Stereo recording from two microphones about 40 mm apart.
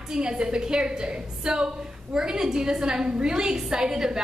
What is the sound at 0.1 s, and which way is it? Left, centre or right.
A woman's voice, right.